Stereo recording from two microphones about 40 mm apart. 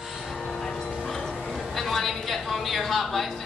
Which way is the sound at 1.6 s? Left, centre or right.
Centre.